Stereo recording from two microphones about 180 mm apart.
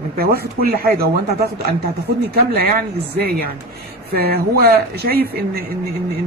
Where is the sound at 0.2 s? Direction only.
55° right (ahead or behind).